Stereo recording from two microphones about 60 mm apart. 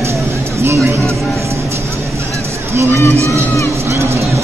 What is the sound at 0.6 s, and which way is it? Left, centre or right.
Music, right.